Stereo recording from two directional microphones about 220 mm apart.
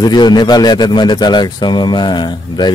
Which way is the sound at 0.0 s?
20° left (ahead or behind).